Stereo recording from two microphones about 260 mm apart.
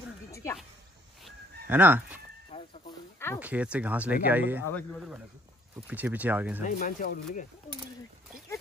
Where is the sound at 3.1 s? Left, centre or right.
Centre.